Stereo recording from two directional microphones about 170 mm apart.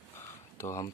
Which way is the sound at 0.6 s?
15° left (ahead or behind).